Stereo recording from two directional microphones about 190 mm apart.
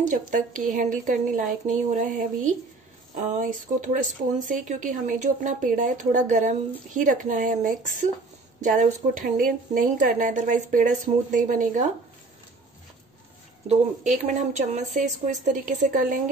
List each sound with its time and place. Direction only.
0.1 s a woman's voice: 45° right (ahead or behind)
13.7 s speech: 35° right (ahead or behind)